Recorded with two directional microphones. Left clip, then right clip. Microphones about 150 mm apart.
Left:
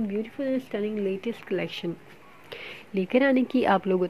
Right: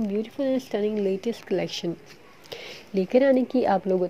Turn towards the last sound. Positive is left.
turn(degrees=10)  # may be behind; listen again after turning